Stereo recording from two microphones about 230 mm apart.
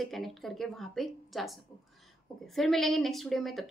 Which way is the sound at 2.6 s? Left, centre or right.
Centre.